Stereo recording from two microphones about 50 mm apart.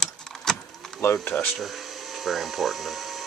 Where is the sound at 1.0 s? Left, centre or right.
Left.